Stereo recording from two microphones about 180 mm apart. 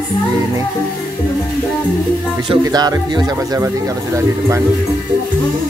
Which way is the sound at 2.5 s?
20° right (ahead or behind).